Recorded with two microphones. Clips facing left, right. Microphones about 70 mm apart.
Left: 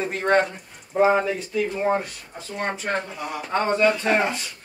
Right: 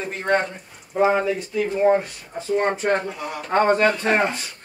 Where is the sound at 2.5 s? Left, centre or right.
Right.